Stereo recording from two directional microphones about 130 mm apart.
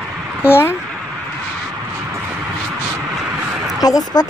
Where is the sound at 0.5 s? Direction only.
15° left (ahead or behind).